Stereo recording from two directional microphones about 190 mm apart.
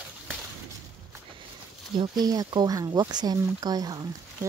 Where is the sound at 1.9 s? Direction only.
25° right (ahead or behind).